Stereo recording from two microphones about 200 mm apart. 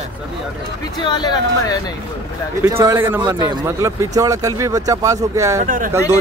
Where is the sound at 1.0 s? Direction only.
20° left (ahead or behind).